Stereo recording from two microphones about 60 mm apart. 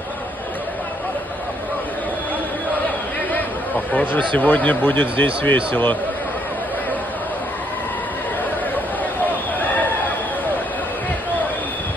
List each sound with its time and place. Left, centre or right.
3.9 s speech: left